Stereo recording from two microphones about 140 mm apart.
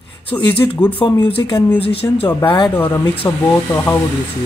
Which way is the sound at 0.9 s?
35° left (ahead or behind).